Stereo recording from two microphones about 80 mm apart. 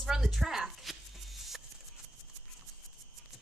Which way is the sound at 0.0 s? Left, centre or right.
Centre.